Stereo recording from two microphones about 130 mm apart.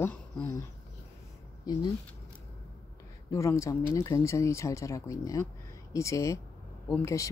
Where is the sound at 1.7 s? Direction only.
30° left (ahead or behind).